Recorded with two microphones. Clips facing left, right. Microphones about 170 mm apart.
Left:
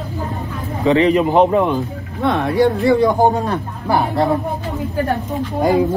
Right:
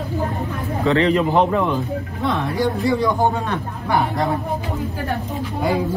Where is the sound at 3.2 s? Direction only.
40° left (ahead or behind).